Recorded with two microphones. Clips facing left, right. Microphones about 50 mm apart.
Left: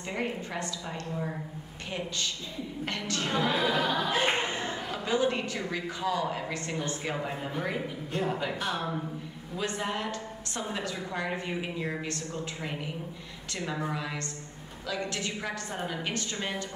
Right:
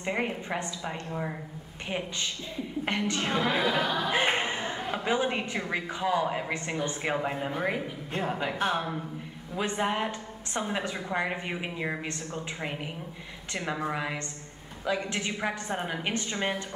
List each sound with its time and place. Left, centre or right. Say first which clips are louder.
0.0 s a woman's voice: right 3 dB; right; by 4.1 s centre
4.1 s a woman's voice: right 1 dB; right